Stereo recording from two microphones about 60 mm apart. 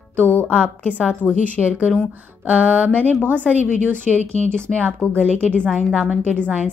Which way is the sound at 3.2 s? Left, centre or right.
Right.